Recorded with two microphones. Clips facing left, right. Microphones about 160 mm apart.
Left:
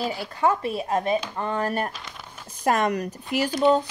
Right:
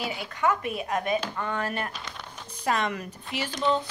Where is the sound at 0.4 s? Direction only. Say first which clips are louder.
Left 3 dB; 30° left (ahead or behind).